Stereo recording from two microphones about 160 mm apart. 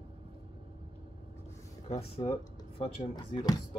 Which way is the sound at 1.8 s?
40° left (ahead or behind).